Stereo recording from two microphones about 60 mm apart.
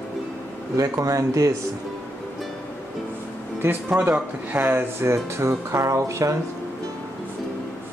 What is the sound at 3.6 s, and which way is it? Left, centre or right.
Speech, right.